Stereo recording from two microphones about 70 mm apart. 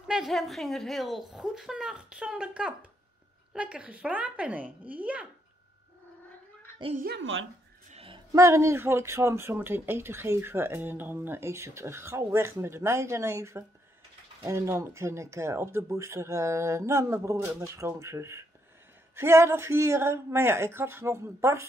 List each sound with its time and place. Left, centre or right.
0.3 s a woman's voice: centre
8.3 s speech: right